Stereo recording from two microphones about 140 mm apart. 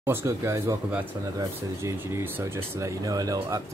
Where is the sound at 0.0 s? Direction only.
20° right (ahead or behind).